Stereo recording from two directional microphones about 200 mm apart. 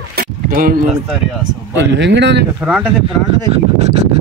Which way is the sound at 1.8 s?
60° right (ahead or behind).